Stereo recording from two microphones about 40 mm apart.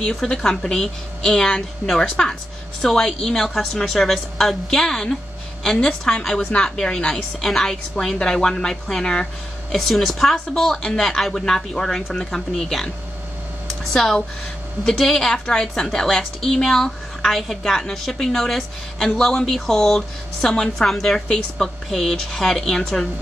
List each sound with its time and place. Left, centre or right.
0.0 s a woman's voice: centre
3.0 s a woman's voice: centre
9.8 s a woman's voice: centre
14.9 s a woman's voice: centre
15.3 s speech: centre
15.8 s a woman's voice: centre